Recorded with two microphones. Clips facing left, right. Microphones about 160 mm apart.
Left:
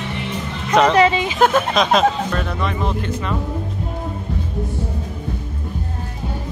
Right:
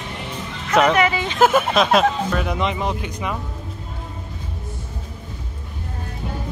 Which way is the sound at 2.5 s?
15° right (ahead or behind).